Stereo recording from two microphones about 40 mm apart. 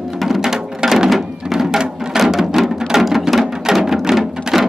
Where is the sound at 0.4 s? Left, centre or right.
Centre.